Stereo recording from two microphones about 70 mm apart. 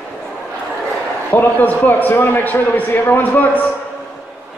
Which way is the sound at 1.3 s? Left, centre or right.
Left.